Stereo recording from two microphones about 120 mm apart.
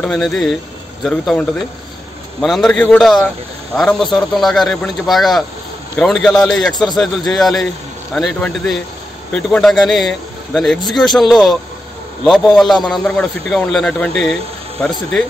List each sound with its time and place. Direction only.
0.0 s speech: 5° left (ahead or behind)
2.4 s speech: centre (ahead or behind)
6.7 s a man's voice: 35° left (ahead or behind)
7.0 s speech: centre (ahead or behind)